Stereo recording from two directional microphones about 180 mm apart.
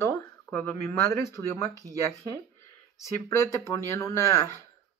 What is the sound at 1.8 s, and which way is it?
Speech, 15° right (ahead or behind).